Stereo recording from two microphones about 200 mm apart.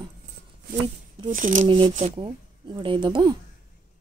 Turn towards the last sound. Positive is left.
turn(degrees=-25)  # may be behind; listen again after turning